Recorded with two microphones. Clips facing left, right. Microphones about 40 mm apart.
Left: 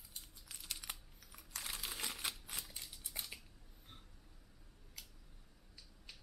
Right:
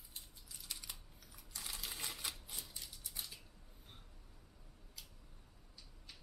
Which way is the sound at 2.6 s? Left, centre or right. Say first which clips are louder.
Even; left.